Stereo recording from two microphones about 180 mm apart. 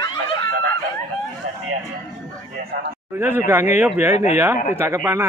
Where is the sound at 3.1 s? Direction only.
10° right (ahead or behind).